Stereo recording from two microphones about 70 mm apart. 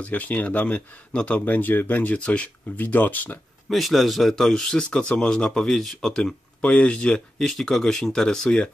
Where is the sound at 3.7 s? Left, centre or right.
Centre.